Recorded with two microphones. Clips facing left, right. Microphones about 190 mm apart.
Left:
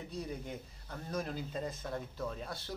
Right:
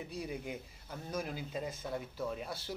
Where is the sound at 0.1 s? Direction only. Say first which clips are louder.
Even; 10° right (ahead or behind).